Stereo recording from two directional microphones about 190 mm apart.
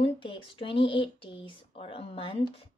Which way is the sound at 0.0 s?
25° left (ahead or behind).